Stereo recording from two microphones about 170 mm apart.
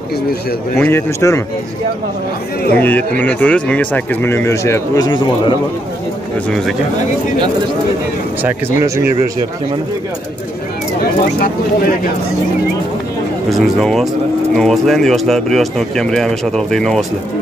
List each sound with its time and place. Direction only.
0.7 s speech: 15° left (ahead or behind)
2.8 s speech: 10° left (ahead or behind); by 5.6 s 25° left (ahead or behind)
8.4 s speech: 10° right (ahead or behind)
11.4 s speech: 55° left (ahead or behind)
13.5 s speech: centre (ahead or behind)